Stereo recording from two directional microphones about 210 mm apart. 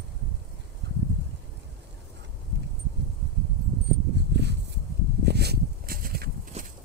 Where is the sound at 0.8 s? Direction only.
55° right (ahead or behind).